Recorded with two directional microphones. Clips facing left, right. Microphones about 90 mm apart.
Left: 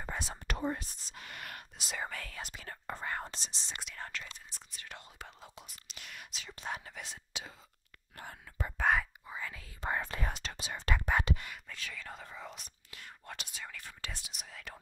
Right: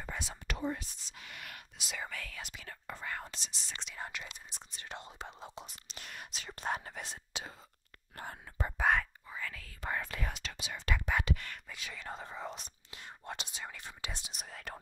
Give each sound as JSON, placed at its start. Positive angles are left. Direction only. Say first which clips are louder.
{"t": 0.0, "sound": "speech", "louder": "left 2 dB", "side_deg": 40}
{"t": 3.8, "sound": "speech", "louder": "right 2 dB", "side_deg": -10}
{"t": 9.3, "sound": "speech", "louder": "left 1 dB", "side_deg": 20}
{"t": 11.7, "sound": "speech", "louder": "right 3 dB", "side_deg": -20}
{"t": 14.3, "sound": "speech", "louder": "right 3 dB", "side_deg": -40}